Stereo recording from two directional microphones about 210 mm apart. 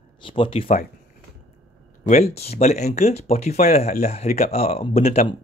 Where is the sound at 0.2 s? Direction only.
25° left (ahead or behind).